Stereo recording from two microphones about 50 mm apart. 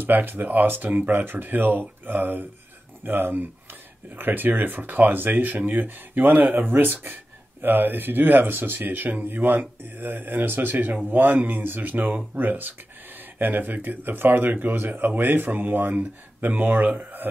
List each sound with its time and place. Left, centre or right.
0.0 s speech: right